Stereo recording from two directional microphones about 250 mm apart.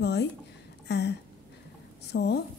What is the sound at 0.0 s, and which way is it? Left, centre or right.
Speech, left.